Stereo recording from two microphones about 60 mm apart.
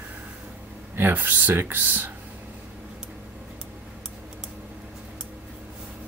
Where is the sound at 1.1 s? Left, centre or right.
Right.